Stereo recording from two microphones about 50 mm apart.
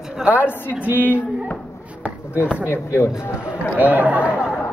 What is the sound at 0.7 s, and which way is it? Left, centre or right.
Speech, right.